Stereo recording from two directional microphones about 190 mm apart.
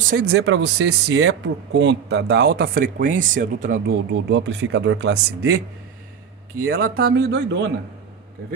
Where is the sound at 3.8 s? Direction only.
70° right (ahead or behind).